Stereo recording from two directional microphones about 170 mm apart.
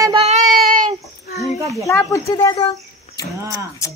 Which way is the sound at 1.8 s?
20° left (ahead or behind).